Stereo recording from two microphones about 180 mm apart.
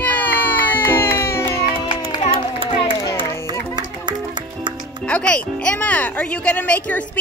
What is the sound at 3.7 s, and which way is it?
Music, 25° right (ahead or behind).